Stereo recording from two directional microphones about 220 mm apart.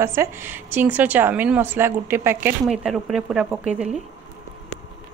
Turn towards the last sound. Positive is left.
turn(degrees=-5)  # may be behind; listen again after turning